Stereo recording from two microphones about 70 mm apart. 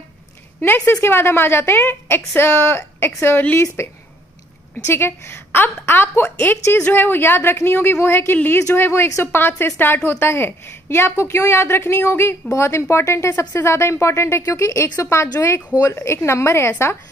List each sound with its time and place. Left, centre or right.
0.6 s a woman's voice: left
3.6 s a woman's voice: left